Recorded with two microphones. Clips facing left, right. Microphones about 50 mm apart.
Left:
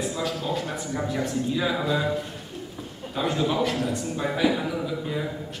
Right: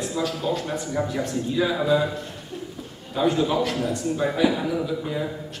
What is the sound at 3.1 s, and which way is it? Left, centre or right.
A man's voice, centre.